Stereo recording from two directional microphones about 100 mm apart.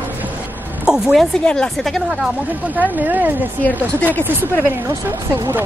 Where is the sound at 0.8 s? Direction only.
5° right (ahead or behind).